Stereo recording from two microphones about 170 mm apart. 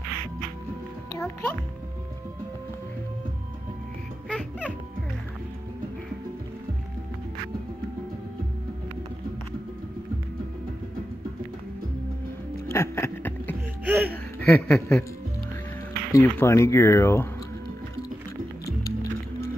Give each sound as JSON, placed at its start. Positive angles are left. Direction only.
{"t": 1.1, "sound": "a child's voice", "side_deg": 15}
{"t": 4.3, "sound": "music", "side_deg": 5}
{"t": 12.7, "sound": "a sound", "side_deg": 15}
{"t": 13.8, "sound": "a sound", "side_deg": -10}
{"t": 14.4, "sound": "speech", "side_deg": 10}
{"t": 16.1, "sound": "speech", "side_deg": 15}